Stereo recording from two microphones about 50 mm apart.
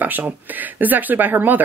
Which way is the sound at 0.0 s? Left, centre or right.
Right.